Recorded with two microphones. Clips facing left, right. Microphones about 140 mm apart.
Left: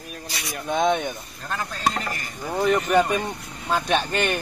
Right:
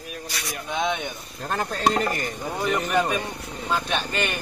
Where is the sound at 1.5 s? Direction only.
45° right (ahead or behind).